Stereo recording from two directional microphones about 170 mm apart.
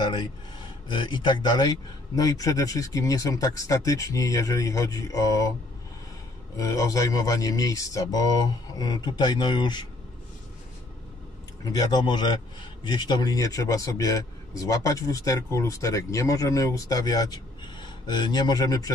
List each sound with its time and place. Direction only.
0.0 s a man's voice: 25° left (ahead or behind)
6.5 s a man's voice: 20° left (ahead or behind)
11.6 s a man's voice: 25° left (ahead or behind)